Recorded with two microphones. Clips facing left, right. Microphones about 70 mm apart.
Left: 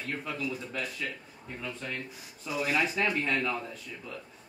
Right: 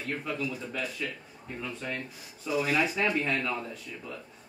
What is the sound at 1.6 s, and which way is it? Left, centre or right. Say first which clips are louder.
A man's voice: right 2 dB; centre.